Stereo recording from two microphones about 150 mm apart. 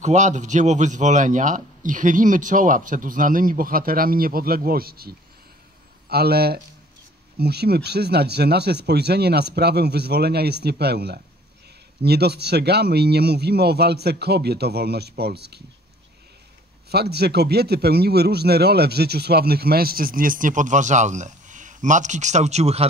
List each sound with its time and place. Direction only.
0.0 s a man's voice: 50° right (ahead or behind); by 15.6 s 90° right
16.9 s a man's voice: 90° right; by 22.8 s 45° right (ahead or behind)